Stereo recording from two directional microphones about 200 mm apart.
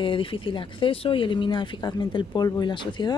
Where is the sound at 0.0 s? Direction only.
25° left (ahead or behind).